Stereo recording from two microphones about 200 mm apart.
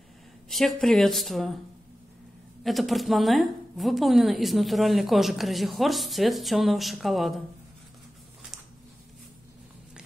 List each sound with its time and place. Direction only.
0.5 s a woman's voice: centre (ahead or behind)
2.6 s a woman's voice: centre (ahead or behind)